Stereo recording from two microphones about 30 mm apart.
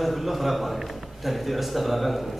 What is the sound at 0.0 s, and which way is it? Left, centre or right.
A man's voice, centre.